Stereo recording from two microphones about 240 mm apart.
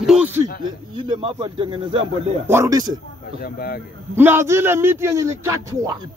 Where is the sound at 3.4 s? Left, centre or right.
Left.